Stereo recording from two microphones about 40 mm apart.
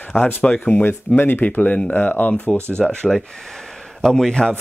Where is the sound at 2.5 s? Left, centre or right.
Right.